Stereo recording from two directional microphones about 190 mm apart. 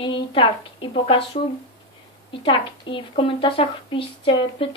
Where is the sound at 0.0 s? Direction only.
25° left (ahead or behind).